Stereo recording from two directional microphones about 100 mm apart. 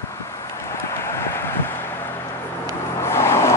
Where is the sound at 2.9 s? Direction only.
25° left (ahead or behind).